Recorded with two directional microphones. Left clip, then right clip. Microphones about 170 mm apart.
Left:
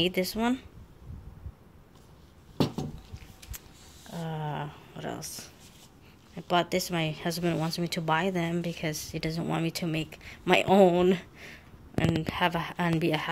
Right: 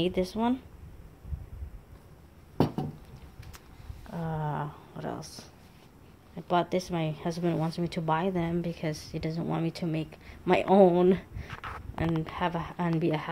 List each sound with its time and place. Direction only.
0.0 s a woman's voice: centre (ahead or behind)
2.5 s a sound: 25° right (ahead or behind)
4.1 s a woman's voice: 10° right (ahead or behind)